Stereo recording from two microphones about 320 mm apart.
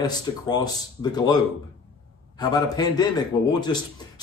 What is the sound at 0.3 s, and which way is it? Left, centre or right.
Speech, centre.